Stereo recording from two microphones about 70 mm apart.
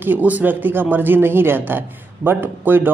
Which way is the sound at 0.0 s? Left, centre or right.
Right.